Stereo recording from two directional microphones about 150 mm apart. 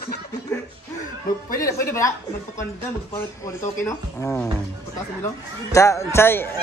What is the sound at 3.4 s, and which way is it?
Speech, 20° left (ahead or behind).